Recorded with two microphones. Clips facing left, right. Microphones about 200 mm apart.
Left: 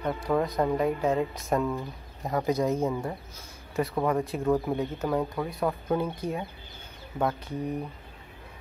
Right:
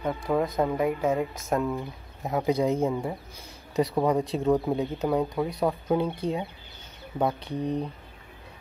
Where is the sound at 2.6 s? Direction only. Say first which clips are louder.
Right 2 dB; 15° right (ahead or behind).